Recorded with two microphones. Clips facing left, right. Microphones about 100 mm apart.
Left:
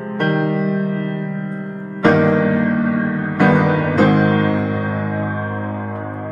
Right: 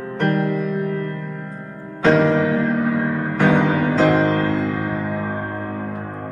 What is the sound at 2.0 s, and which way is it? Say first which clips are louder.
Music: left 2 dB; 55° left (ahead or behind).